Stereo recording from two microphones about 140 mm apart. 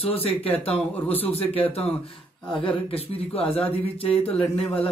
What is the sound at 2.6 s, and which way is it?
Speech, 40° left (ahead or behind).